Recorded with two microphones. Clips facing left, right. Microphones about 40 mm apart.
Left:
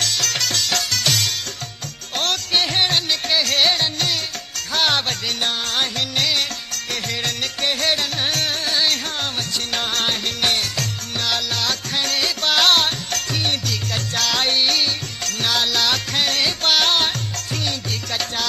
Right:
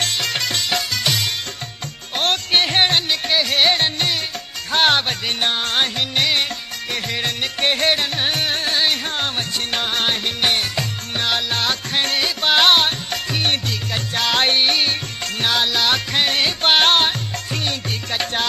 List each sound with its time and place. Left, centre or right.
0.2 s music: centre
2.2 s music: right
3.1 s music: centre
3.7 s music: right
7.6 s music: right
13.4 s music: right
13.9 s music: centre
14.3 s music: right
15.5 s music: centre; by 17.0 s right